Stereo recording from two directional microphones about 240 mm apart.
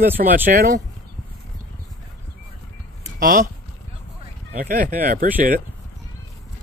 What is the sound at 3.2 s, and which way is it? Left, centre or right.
Speech, right.